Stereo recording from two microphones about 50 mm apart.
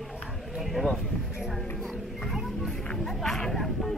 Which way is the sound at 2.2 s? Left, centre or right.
Centre.